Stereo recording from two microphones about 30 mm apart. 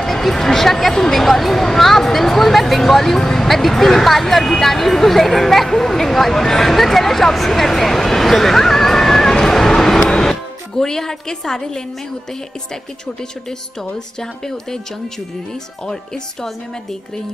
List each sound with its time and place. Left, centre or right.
0.0 s speech: centre
13.0 s speech: left